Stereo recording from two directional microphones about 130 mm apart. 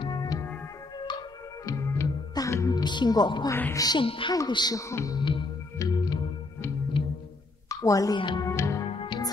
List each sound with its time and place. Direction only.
0.0 s music: 30° left (ahead or behind)
1.7 s music: 25° left (ahead or behind)
2.8 s a woman's voice: 35° left (ahead or behind)
3.4 s speech: 15° left (ahead or behind)
3.7 s speech: 30° left (ahead or behind)
4.0 s a woman's voice: 45° left (ahead or behind)
4.3 s speech: 30° left (ahead or behind)
5.8 s music: 30° left (ahead or behind)
7.0 s music: 45° left (ahead or behind)
7.8 s a woman's voice: 25° left (ahead or behind)
8.2 s a woman's voice: 35° left (ahead or behind)
8.5 s music: 20° left (ahead or behind)
8.8 s music: 45° left (ahead or behind)